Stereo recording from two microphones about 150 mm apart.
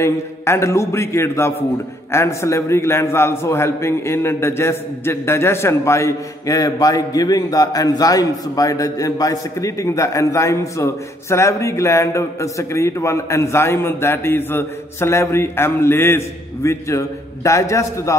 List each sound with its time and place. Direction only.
0.0 s a man's voice: 20° left (ahead or behind)